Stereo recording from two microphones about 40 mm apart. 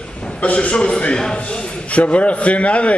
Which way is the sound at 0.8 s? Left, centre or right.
Left.